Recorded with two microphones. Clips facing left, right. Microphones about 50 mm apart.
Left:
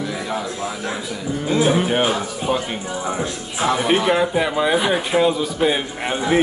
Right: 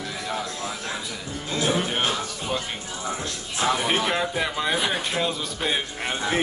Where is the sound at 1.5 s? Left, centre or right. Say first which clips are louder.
Left 7 dB; centre.